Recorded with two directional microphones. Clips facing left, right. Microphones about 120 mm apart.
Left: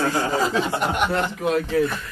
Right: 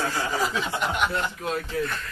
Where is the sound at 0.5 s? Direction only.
45° left (ahead or behind).